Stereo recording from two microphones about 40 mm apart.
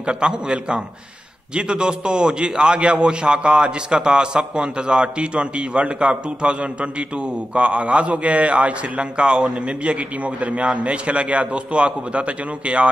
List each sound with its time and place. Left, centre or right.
0.0 s a man's voice: right